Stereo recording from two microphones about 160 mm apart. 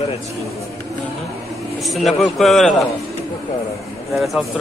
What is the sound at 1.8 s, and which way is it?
A man's voice, centre (ahead or behind).